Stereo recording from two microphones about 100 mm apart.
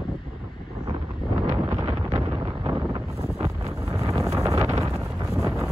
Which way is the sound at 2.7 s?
35° right (ahead or behind).